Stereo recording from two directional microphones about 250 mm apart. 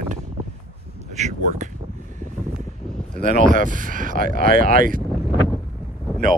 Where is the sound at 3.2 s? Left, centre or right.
Right.